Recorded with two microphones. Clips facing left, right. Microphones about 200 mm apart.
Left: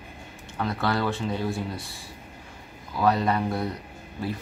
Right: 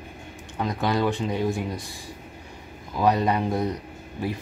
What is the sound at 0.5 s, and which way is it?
Speech, 15° right (ahead or behind).